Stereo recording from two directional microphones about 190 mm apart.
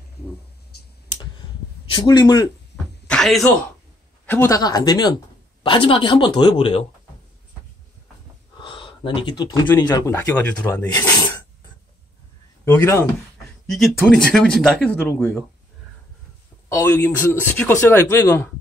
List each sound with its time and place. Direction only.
1.9 s speech: 25° left (ahead or behind)
3.1 s a sound: centre (ahead or behind)
4.3 s speech: 15° left (ahead or behind)
8.5 s a sound: 25° left (ahead or behind)
9.8 s speech: 15° left (ahead or behind)
10.9 s speech: 20° left (ahead or behind)
12.7 s speech: 15° left (ahead or behind)
13.7 s speech: centre (ahead or behind)
16.6 s speech: 15° left (ahead or behind)